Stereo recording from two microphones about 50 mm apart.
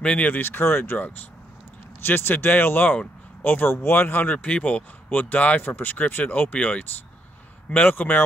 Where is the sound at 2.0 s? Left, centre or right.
Left.